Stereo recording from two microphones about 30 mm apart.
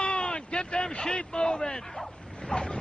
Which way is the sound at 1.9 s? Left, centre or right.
Centre.